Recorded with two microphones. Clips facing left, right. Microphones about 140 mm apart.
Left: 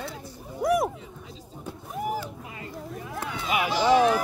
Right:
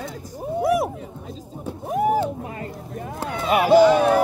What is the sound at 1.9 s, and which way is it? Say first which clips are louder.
Vehicle: right 11 dB; 60° right (ahead or behind).